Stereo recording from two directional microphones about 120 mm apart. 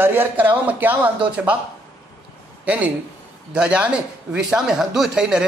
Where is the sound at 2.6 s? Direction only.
10° right (ahead or behind).